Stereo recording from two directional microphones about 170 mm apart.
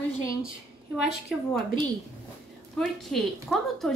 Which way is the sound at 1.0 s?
5° right (ahead or behind).